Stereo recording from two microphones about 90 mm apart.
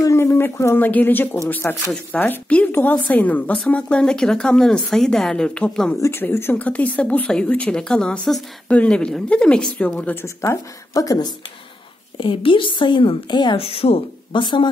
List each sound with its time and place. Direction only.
0.0 s speech: 30° left (ahead or behind); by 5.9 s 10° left (ahead or behind)
5.9 s speech: 35° left (ahead or behind); by 10.1 s 15° left (ahead or behind)
10.2 s speech: 35° left (ahead or behind)
12.2 s a woman's voice: 75° left (ahead or behind)